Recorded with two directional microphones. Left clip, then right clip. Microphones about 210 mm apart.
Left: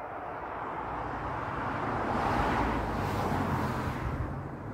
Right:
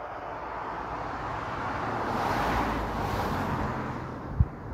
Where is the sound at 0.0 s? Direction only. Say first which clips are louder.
Right 2 dB; 25° right (ahead or behind); by 2.8 s 55° right (ahead or behind).